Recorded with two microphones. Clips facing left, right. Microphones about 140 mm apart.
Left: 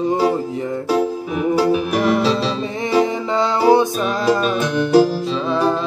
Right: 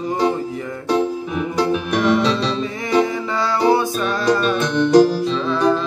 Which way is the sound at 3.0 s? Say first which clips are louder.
Left 1 dB; 20° left (ahead or behind).